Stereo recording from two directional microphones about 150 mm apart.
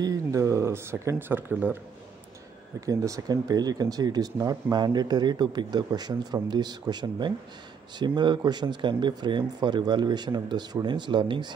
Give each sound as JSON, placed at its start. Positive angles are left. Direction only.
{"t": 0.0, "sound": "speech", "side_deg": -20}
{"t": 2.8, "sound": "speech", "side_deg": -20}